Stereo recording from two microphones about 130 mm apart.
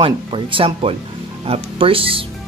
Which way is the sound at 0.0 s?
45° right (ahead or behind).